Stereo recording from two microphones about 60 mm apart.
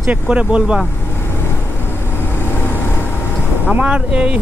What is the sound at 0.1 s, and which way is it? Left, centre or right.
Speech, centre.